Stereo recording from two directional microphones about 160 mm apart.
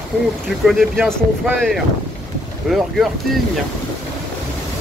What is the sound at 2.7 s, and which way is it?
Speech, centre (ahead or behind).